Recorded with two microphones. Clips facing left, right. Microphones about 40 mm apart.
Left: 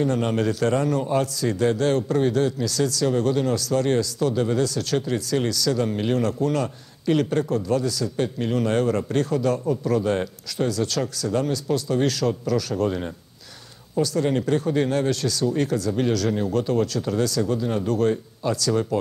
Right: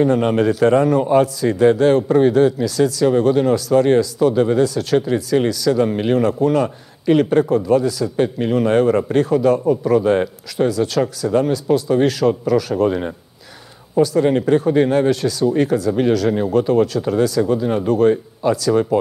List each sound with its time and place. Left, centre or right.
0.0 s a man's voice: centre